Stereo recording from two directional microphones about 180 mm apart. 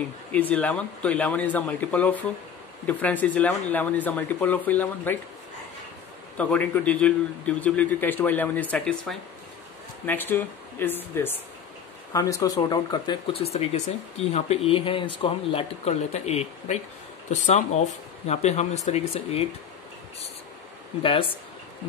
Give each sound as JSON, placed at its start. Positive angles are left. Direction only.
{"t": 0.3, "sound": "a man's voice", "side_deg": 10}
{"t": 6.3, "sound": "a man's voice", "side_deg": 5}
{"t": 21.0, "sound": "speech", "side_deg": 30}